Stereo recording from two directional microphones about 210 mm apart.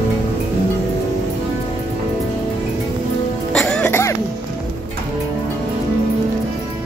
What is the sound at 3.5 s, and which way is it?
Music, 5° left (ahead or behind).